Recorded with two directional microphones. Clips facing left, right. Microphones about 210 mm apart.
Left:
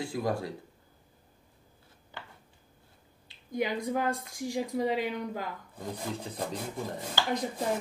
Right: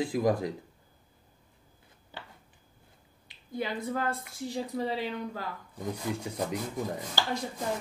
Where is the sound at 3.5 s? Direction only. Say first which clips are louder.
Left 2 dB; 15° left (ahead or behind).